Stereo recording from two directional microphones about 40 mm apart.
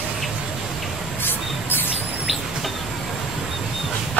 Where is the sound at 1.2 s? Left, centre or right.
Left.